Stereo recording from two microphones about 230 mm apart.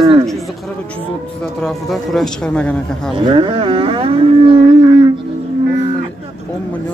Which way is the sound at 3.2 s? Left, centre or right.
Right.